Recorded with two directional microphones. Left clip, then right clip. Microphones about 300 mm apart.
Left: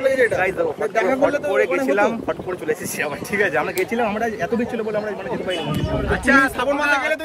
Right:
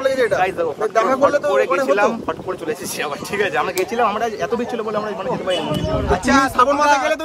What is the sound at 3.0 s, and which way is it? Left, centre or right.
A man's voice, centre.